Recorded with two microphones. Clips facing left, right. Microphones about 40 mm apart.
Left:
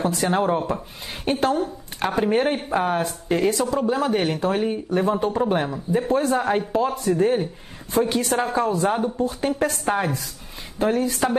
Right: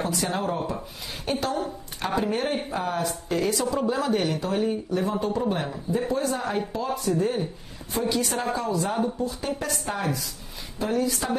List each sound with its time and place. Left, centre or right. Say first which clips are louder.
0.0 s speech: left 6 dB; left
3.8 s speech: left 3 dB; left
4.3 s a woman's voice: left 3 dB; left